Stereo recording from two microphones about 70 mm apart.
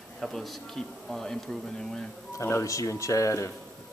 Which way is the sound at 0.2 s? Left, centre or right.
Centre.